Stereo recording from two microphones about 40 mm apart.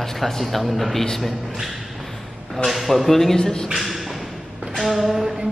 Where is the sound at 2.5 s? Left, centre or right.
Centre.